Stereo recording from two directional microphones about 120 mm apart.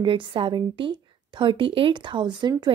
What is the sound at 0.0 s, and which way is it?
A woman's voice, 45° right (ahead or behind).